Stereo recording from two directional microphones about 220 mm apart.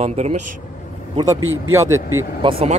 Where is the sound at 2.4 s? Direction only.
25° right (ahead or behind).